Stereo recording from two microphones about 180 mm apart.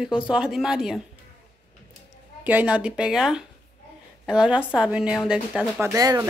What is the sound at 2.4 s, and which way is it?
A woman's voice, 10° right (ahead or behind).